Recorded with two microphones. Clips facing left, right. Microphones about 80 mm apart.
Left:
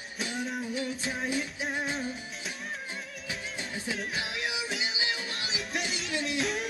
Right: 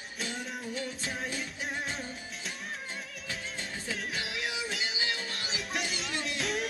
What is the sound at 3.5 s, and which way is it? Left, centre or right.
Music, centre.